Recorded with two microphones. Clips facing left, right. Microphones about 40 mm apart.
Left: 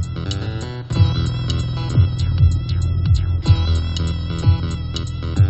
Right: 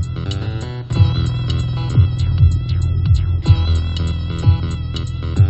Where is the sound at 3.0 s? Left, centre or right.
Right.